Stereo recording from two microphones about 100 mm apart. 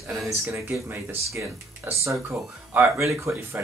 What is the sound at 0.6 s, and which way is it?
Speech, 20° right (ahead or behind).